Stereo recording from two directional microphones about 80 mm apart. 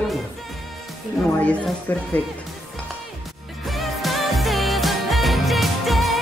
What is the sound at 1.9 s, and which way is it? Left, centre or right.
Speech, left.